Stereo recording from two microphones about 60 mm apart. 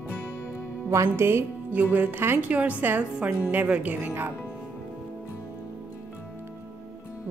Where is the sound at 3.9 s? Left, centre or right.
Right.